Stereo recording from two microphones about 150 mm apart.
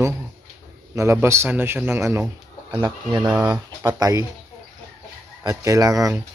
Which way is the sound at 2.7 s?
30° right (ahead or behind).